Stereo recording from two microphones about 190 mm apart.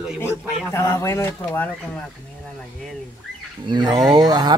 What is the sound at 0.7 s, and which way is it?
Speech, 15° left (ahead or behind).